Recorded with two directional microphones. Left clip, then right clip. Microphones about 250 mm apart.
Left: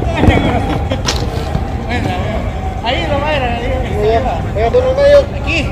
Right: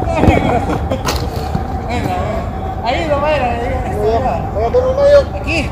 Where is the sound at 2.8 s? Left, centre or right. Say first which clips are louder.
Right 1 dB; centre.